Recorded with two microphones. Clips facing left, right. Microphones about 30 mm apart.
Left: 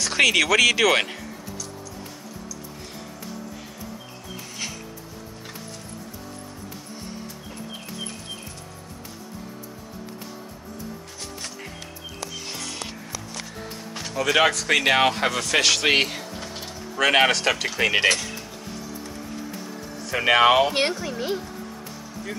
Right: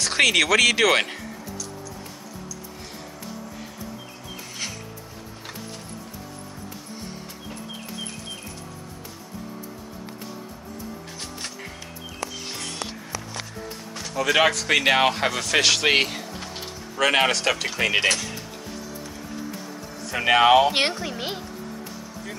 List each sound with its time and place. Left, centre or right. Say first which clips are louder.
0.0 s speech: even; centre
14.1 s speech: even; centre
20.1 s speech: even; centre
20.7 s speech: even; right